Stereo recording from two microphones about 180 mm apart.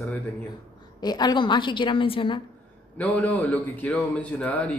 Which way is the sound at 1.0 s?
20° left (ahead or behind).